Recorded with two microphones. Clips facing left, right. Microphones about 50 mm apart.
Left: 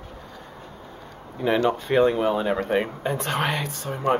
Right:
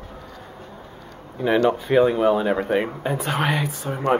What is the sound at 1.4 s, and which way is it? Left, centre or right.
Speech, centre.